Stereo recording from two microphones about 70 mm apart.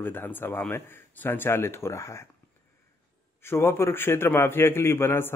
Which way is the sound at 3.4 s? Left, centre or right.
Left.